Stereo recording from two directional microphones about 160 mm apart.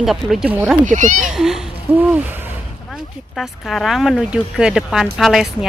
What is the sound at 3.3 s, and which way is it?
Speech, centre (ahead or behind).